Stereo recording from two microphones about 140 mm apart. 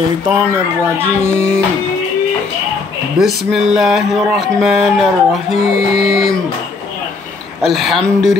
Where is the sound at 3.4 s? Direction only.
5° right (ahead or behind).